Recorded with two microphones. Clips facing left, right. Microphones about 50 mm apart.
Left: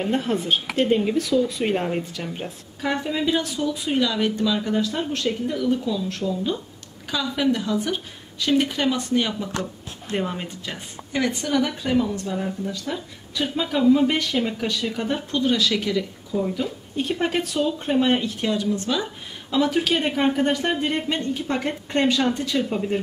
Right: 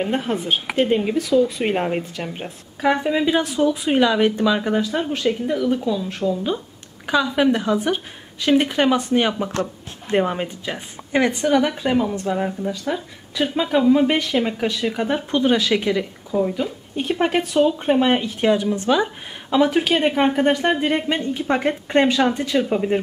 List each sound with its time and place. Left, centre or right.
0.0 s speech: centre; by 4.8 s right
4.8 s speech: centre
11.1 s a woman's voice: right
11.4 s speech: centre
12.7 s speech: centre
17.6 s speech: right